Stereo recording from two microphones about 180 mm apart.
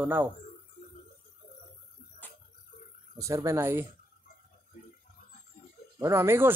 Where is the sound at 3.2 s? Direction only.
15° right (ahead or behind).